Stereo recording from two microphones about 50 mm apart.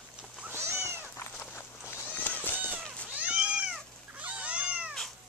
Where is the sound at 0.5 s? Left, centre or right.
Right.